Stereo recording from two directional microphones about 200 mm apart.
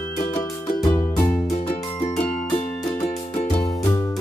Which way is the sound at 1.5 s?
30° left (ahead or behind).